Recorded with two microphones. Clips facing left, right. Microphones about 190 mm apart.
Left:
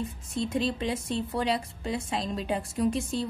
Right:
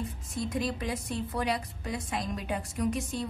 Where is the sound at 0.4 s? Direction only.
25° left (ahead or behind).